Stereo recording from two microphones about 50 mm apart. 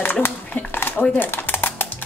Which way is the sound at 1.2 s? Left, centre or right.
Left.